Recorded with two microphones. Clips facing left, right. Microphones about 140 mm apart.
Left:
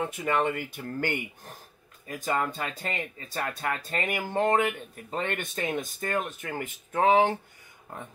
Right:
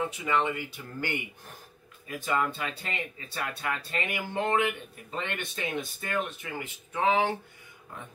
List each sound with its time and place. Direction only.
0.1 s speech: 50° left (ahead or behind)